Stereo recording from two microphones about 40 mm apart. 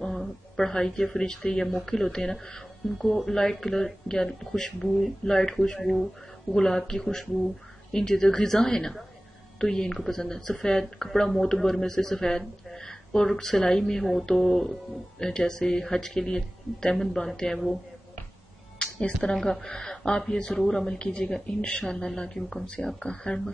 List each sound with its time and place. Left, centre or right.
0.2 s a woman's voice: centre
5.8 s speech: centre
9.9 s speech: centre
18.9 s speech: left
21.5 s speech: left
21.8 s speech: centre